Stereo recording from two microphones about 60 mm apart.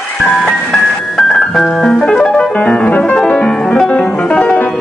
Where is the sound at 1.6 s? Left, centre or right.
Centre.